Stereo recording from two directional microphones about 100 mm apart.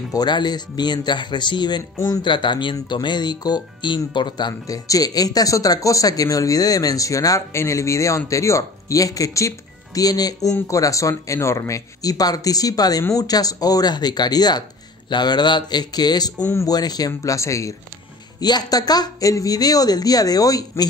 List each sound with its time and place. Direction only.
0.1 s speech: 45° left (ahead or behind)
2.2 s speech: 50° left (ahead or behind); by 17.7 s 30° left (ahead or behind)
18.4 s speech: 45° left (ahead or behind)